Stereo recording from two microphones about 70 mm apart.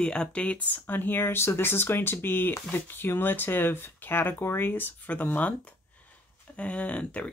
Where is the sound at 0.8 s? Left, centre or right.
Left.